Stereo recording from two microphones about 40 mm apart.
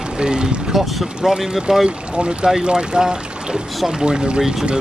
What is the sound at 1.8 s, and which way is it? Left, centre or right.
Speech, right.